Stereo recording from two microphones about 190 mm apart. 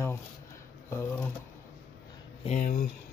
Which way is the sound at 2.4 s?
40° left (ahead or behind).